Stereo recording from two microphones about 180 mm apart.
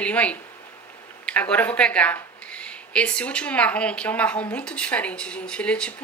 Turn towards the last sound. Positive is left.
turn(degrees=5)  # may be behind; listen again after turning